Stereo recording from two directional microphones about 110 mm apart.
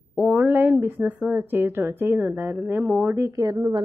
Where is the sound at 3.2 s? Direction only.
30° right (ahead or behind).